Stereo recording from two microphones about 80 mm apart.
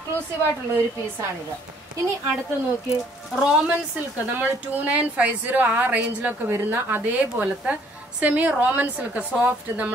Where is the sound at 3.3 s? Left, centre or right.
Centre.